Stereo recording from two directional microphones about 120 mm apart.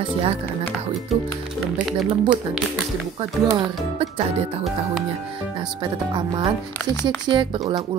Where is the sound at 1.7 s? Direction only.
5° right (ahead or behind).